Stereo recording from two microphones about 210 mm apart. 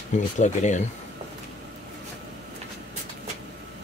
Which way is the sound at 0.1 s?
35° left (ahead or behind).